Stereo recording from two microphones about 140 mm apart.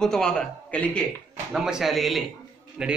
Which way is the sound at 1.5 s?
5° right (ahead or behind).